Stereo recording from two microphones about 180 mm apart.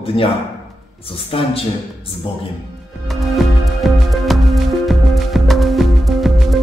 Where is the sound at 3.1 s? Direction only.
Centre (ahead or behind).